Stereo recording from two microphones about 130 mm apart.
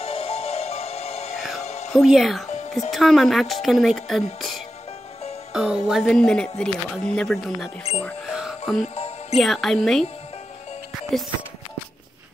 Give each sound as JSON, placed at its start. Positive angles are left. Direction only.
{"t": 0.0, "sound": "music", "side_deg": 45}
{"t": 1.9, "sound": "speech", "side_deg": 0}
{"t": 5.5, "sound": "music", "side_deg": -5}
{"t": 5.9, "sound": "speech", "side_deg": 0}
{"t": 8.3, "sound": "music", "side_deg": -5}
{"t": 8.8, "sound": "music", "side_deg": 50}
{"t": 9.4, "sound": "speech", "side_deg": 0}